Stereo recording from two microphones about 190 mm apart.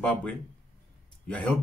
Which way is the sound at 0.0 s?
5° left (ahead or behind).